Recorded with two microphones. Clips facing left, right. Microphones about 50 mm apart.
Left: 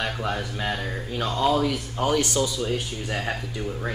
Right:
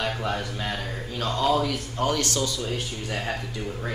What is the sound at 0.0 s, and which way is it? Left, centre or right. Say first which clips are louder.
Speech: even; centre.